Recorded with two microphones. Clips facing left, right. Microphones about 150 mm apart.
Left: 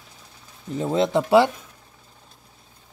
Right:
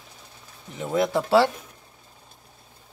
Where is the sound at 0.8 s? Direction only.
25° left (ahead or behind).